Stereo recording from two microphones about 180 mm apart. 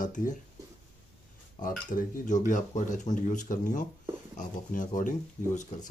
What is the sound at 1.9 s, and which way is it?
Speech, 45° left (ahead or behind).